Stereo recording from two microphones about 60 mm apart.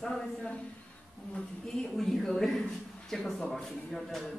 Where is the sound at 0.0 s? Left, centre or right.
Centre.